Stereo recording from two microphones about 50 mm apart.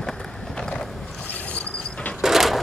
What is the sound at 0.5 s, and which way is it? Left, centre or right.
Boat, centre.